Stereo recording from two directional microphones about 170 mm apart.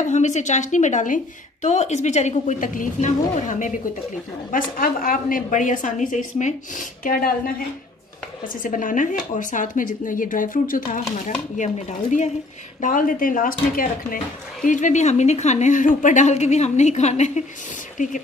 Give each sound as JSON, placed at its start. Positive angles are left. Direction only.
{"t": 0.0, "sound": "speech", "side_deg": 45}
{"t": 8.6, "sound": "speech", "side_deg": 50}